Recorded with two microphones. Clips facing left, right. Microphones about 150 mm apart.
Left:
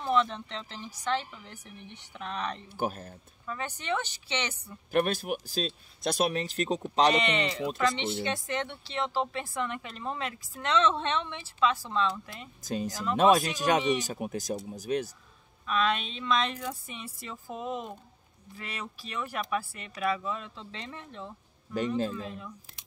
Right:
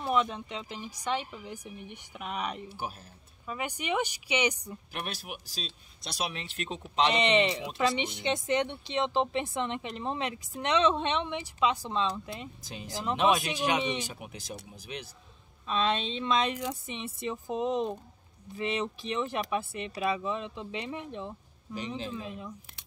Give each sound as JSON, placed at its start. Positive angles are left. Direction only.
{"t": 0.0, "sound": "a woman's voice", "side_deg": -15}
{"t": 2.7, "sound": "speech", "side_deg": 55}
{"t": 3.4, "sound": "a woman's voice", "side_deg": -15}
{"t": 4.9, "sound": "speech", "side_deg": 50}
{"t": 7.2, "sound": "speech", "side_deg": -20}
{"t": 12.6, "sound": "speech", "side_deg": 45}
{"t": 12.9, "sound": "speech", "side_deg": -20}
{"t": 14.0, "sound": "speech", "side_deg": 40}
{"t": 15.6, "sound": "speech", "side_deg": -25}
{"t": 21.7, "sound": "speech", "side_deg": 50}
{"t": 22.1, "sound": "speech", "side_deg": -20}